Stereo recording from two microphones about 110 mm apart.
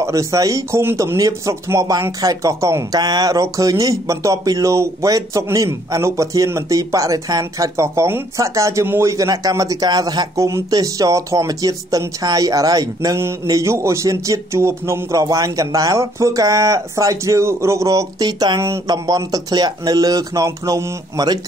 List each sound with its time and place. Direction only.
0.0 s speech: 30° right (ahead or behind)